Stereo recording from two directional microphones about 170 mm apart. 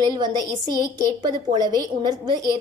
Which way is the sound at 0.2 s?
25° right (ahead or behind).